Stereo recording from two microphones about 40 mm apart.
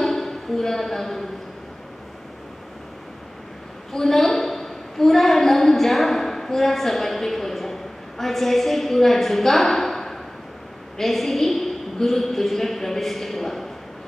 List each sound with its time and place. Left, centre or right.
0.0 s speech: centre
3.9 s a woman's voice: centre